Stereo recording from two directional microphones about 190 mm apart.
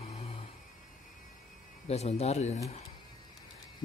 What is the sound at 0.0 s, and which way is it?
Vehicle, 30° left (ahead or behind).